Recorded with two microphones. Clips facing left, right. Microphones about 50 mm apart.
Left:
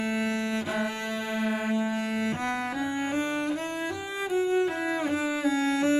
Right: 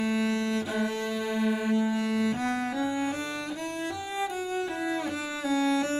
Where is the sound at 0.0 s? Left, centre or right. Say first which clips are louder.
Right 1 dB; left.